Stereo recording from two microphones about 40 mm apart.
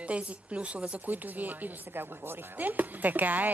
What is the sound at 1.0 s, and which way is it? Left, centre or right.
Speech, right.